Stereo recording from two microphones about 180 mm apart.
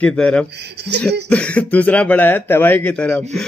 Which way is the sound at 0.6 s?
70° right (ahead or behind).